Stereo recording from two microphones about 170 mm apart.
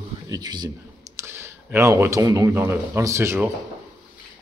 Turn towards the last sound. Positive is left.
turn(degrees=-15)  # may be behind; listen again after turning